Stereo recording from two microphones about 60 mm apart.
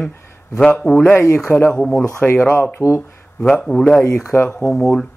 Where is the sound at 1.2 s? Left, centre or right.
Left.